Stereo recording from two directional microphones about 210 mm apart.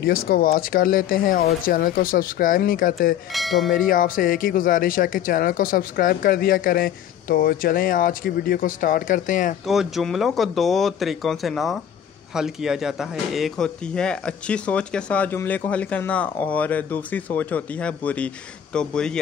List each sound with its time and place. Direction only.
0.0 s speech: 45° left (ahead or behind)
3.3 s speech: centre (ahead or behind)
3.7 s speech: 40° left (ahead or behind)
9.7 s speech: centre (ahead or behind)